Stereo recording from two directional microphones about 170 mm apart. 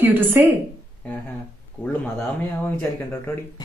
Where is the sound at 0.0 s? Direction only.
10° right (ahead or behind).